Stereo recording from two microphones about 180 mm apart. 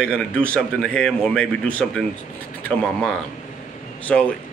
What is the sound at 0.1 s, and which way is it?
A man's voice, 5° left (ahead or behind).